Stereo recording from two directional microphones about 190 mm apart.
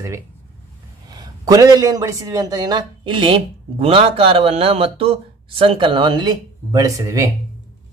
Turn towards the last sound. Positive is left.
turn(degrees=-15)  # may be behind; listen again after turning